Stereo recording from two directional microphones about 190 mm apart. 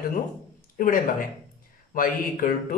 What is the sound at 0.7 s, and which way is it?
Speech, 45° left (ahead or behind).